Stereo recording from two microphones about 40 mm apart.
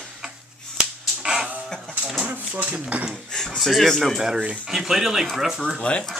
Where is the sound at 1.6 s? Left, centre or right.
Centre.